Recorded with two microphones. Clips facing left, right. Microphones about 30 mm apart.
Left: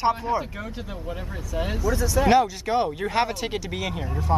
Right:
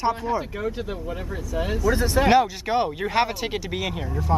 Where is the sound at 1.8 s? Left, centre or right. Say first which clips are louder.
Right 3 dB; right.